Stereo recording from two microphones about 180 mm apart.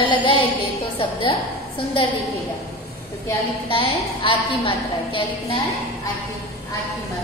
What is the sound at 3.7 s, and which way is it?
A woman's voice, 30° left (ahead or behind).